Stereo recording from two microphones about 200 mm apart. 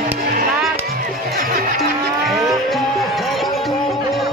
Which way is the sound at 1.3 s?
45° right (ahead or behind).